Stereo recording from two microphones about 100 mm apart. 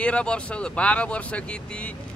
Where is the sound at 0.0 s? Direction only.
10° left (ahead or behind).